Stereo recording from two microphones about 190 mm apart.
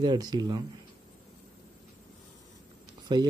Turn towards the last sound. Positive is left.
turn(degrees=-20)  # may be behind; listen again after turning